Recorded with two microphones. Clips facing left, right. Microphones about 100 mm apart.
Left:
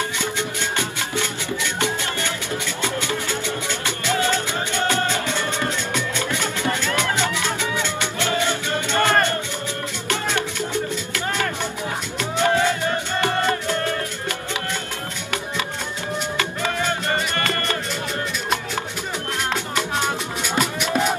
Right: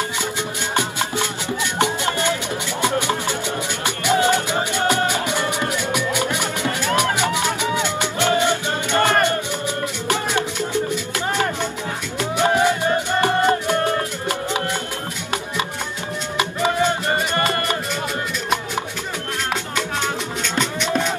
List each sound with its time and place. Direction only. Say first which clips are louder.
0.2 s music: even; 15° right (ahead or behind)
16.3 s music: right 8 dB; 20° right (ahead or behind)
20.0 s music: even; 10° left (ahead or behind)